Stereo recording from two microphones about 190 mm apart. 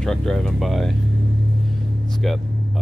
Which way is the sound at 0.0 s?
5° left (ahead or behind).